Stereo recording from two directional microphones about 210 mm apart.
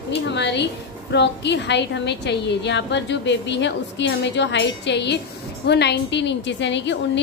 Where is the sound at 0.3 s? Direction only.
55° left (ahead or behind).